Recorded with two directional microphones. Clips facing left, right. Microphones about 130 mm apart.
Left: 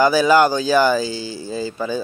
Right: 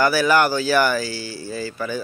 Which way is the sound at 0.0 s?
15° left (ahead or behind).